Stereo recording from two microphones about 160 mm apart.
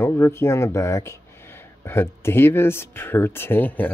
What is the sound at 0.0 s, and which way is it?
Speech, 15° left (ahead or behind).